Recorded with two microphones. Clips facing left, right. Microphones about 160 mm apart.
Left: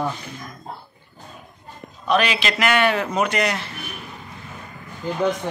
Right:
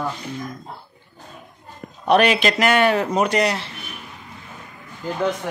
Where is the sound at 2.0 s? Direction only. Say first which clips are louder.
Right 4 dB; 60° right (ahead or behind); by 3.6 s 35° right (ahead or behind).